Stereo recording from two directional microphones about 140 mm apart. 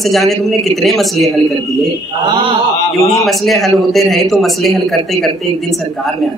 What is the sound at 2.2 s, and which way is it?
Speech, 40° right (ahead or behind).